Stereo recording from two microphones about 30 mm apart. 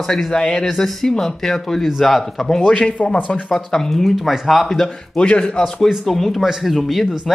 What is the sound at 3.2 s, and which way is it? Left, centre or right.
Speech, left.